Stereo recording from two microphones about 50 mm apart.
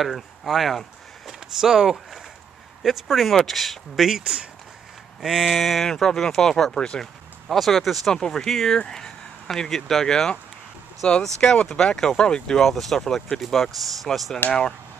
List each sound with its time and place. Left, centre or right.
0.0 s speech: centre
1.6 s speech: centre
4.2 s speech: centre
5.2 s speech: centre
8.7 s speech: centre
12.6 s speech: centre